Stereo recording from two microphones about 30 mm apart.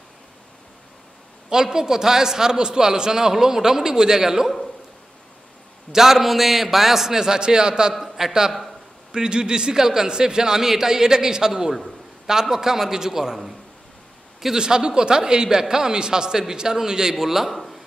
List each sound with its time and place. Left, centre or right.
1.5 s a man's voice: centre
5.9 s a man's voice: centre
7.2 s a man's voice: right
7.9 s a man's voice: centre
9.1 s a man's voice: right; by 13.6 s centre
14.5 s a man's voice: right